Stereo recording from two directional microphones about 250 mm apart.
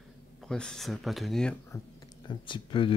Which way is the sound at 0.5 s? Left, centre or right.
Centre.